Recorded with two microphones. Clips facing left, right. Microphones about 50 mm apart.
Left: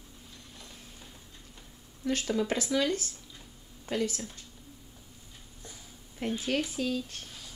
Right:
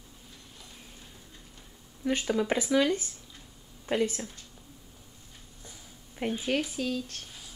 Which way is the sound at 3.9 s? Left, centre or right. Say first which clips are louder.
Right 3 dB; right.